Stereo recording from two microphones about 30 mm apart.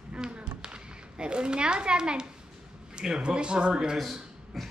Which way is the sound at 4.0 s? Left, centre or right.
Centre.